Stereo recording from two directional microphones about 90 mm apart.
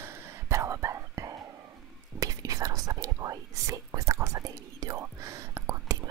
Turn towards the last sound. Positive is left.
turn(degrees=-35)  # may be behind; listen again after turning